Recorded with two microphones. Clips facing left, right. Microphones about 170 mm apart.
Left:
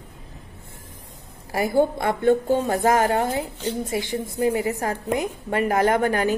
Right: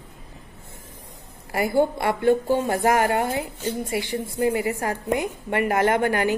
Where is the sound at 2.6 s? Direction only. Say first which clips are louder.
Left 1 dB; 10° right (ahead or behind).